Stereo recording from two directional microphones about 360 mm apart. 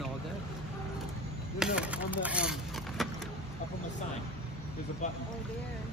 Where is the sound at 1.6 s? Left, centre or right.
Centre.